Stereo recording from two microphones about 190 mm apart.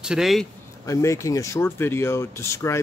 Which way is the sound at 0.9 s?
15° left (ahead or behind).